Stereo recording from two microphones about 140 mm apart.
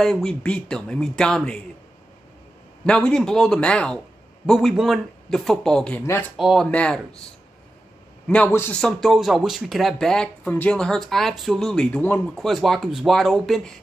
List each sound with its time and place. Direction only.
0.0 s speech: 5° left (ahead or behind)
2.8 s speech: 5° left (ahead or behind)
8.5 s speech: 15° left (ahead or behind)
8.8 s speech: centre (ahead or behind)
12.4 s speech: centre (ahead or behind)